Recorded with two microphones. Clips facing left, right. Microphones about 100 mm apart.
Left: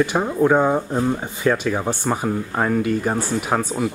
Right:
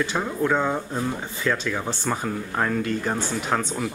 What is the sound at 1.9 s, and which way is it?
Speech, 15° left (ahead or behind).